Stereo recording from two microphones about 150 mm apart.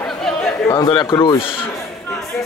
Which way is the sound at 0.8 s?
30° left (ahead or behind).